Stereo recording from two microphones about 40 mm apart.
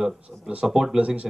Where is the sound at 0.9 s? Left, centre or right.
Right.